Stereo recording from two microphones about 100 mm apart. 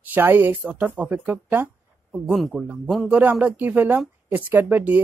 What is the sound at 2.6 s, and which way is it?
Speech, 15° right (ahead or behind).